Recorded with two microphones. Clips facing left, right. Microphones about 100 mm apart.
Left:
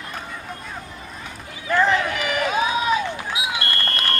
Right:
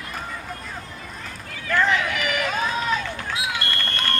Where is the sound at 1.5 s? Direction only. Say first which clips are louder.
Left 2 dB; 20° left (ahead or behind).